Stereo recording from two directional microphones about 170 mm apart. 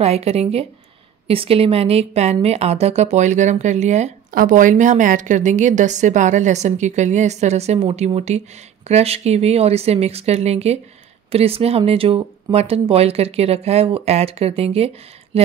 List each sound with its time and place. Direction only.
0.0 s speech: 40° right (ahead or behind)